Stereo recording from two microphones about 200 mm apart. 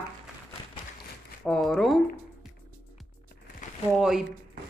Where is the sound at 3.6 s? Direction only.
40° left (ahead or behind).